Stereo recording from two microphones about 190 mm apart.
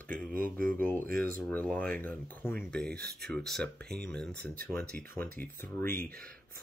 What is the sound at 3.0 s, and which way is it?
Speech, 55° right (ahead or behind).